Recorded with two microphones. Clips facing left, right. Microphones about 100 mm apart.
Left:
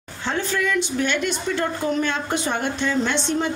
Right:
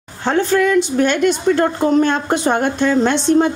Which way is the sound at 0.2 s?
45° right (ahead or behind).